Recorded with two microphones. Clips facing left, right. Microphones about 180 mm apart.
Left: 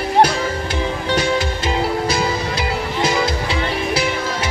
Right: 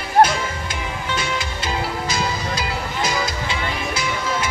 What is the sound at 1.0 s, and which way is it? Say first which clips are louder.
Music: left 7 dB; 35° left (ahead or behind).